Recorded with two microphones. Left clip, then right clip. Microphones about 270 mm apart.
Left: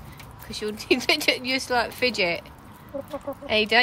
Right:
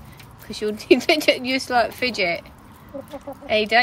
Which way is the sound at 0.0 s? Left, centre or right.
Centre.